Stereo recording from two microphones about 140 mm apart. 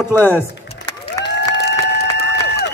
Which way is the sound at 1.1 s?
25° left (ahead or behind).